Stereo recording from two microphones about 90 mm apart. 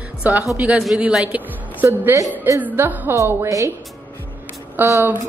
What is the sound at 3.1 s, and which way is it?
Speech, 35° right (ahead or behind).